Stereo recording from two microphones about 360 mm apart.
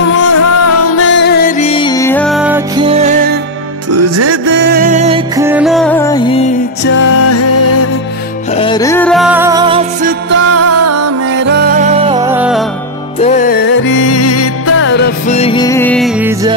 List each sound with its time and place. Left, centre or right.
0.1 s music: left; by 3.3 s right
3.9 s music: right; by 6.4 s centre
6.8 s music: left
8.5 s music: centre
10.5 s music: right
11.3 s music: right; by 12.6 s centre
13.2 s music: left
14.0 s music: left; by 16.5 s centre